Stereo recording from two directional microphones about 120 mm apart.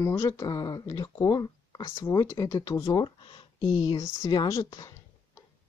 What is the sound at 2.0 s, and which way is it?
Speech, 20° left (ahead or behind).